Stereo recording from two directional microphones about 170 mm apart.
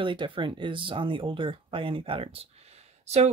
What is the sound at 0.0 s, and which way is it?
Speech, 30° right (ahead or behind).